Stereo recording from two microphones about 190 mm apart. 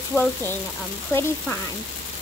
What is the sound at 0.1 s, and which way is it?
Speech, 10° left (ahead or behind).